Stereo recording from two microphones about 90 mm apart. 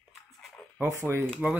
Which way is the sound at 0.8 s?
30° right (ahead or behind).